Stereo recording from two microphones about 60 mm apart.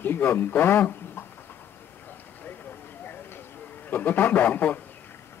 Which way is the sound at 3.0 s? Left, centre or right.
Left.